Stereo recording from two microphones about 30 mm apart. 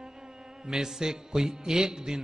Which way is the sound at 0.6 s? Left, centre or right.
Centre.